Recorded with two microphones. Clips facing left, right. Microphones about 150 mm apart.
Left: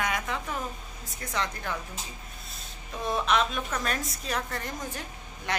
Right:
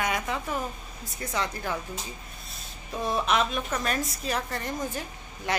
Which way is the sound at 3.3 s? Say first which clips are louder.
Right 1 dB; 5° right (ahead or behind).